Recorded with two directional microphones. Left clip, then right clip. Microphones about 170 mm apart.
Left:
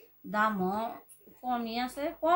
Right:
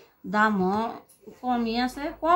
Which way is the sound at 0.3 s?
20° left (ahead or behind).